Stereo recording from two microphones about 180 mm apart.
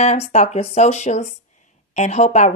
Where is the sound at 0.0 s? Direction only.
35° left (ahead or behind).